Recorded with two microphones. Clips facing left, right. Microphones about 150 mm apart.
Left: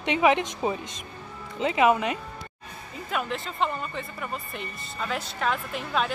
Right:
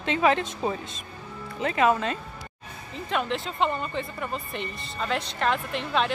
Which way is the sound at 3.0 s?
5° left (ahead or behind).